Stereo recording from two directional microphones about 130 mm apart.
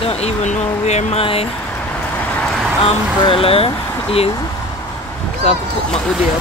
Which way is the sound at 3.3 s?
45° left (ahead or behind).